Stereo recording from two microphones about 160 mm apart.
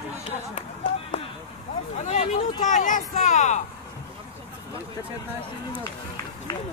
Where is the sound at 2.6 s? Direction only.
55° left (ahead or behind).